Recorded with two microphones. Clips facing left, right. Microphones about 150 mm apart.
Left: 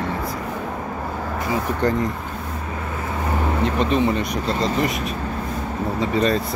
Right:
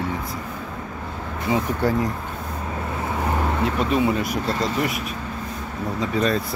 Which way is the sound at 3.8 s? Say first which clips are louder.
Left 1 dB; 5° right (ahead or behind).